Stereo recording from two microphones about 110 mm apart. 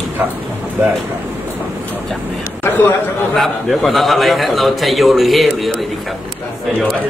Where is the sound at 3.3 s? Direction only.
5° left (ahead or behind).